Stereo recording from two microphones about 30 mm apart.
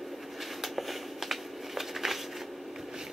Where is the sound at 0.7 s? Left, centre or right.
Centre.